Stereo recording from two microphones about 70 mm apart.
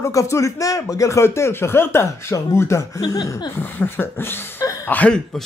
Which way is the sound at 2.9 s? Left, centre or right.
Left.